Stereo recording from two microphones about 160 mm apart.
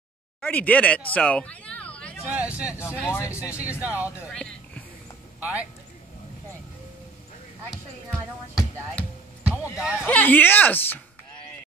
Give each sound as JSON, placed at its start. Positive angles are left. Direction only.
{"t": 0.4, "sound": "speech", "side_deg": 10}
{"t": 2.2, "sound": "speech", "side_deg": -10}
{"t": 2.8, "sound": "speech", "side_deg": 15}
{"t": 3.8, "sound": "speech", "side_deg": -10}
{"t": 4.3, "sound": "music", "side_deg": 5}
{"t": 5.4, "sound": "speech", "side_deg": -10}
{"t": 9.0, "sound": "music", "side_deg": 10}
{"t": 9.4, "sound": "speech", "side_deg": -10}
{"t": 10.0, "sound": "speech", "side_deg": 10}